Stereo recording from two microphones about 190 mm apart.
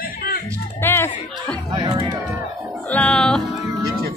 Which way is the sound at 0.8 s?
10° left (ahead or behind).